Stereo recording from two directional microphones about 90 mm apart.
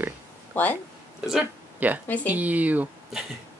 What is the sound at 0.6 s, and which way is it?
Speech, 20° left (ahead or behind).